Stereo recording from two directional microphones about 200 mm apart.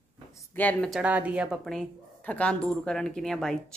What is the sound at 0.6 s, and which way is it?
Speech, 5° left (ahead or behind).